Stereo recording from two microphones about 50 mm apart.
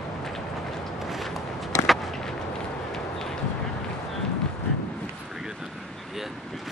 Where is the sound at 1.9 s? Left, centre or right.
Centre.